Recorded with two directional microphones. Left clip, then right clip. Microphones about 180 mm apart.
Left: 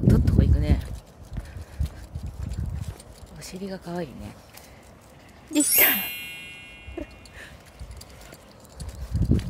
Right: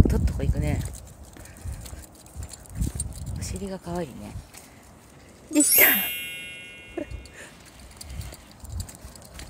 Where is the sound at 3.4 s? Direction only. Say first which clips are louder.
Even; 5° right (ahead or behind).